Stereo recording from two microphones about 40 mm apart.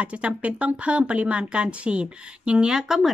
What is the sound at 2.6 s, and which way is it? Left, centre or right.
Speech, centre.